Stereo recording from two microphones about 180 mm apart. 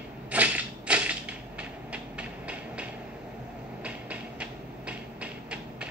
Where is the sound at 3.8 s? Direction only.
5° right (ahead or behind).